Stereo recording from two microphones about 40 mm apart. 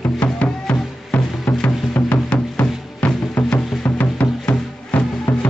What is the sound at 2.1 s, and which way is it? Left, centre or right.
Music, left.